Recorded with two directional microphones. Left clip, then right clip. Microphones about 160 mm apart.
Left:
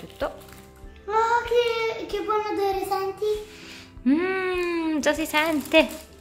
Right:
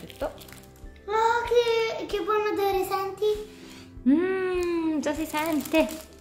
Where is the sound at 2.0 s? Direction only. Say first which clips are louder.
Even; 10° right (ahead or behind).